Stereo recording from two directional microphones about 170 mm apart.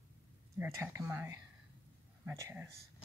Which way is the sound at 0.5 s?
15° right (ahead or behind).